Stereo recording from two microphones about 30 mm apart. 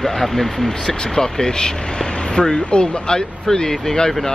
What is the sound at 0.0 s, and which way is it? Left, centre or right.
Speech, centre.